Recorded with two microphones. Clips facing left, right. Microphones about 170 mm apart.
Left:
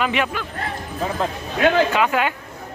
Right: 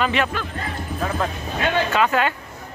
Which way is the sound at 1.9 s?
10° left (ahead or behind).